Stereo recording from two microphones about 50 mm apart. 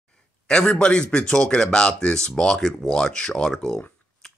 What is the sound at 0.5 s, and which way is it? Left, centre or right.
Speech, centre.